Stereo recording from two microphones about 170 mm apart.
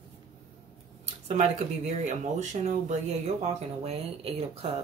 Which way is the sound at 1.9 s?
40° right (ahead or behind).